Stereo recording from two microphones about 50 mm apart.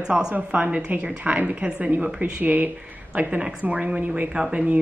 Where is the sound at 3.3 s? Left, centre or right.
Centre.